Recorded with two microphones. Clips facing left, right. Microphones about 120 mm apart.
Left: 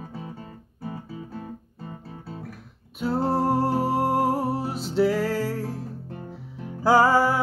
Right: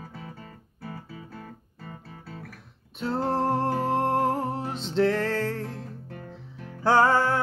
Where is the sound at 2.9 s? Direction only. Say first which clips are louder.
Left 3 dB; 5° left (ahead or behind).